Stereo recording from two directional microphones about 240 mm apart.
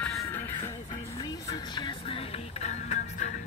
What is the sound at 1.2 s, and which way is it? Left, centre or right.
Music, centre.